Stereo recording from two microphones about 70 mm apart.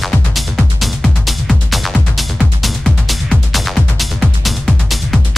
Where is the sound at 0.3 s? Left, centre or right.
Centre.